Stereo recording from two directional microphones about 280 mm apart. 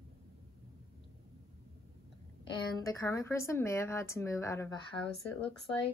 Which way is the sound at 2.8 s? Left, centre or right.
Centre.